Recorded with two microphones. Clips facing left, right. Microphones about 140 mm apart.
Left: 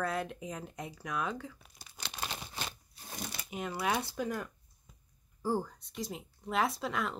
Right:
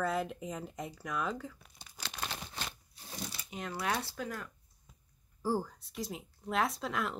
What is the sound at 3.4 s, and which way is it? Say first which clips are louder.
Speech: left 2 dB; 5° left (ahead or behind).